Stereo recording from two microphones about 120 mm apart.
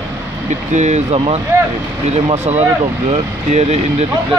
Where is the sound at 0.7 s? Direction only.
75° right (ahead or behind).